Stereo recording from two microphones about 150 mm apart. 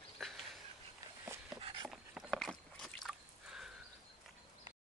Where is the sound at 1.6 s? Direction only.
35° right (ahead or behind).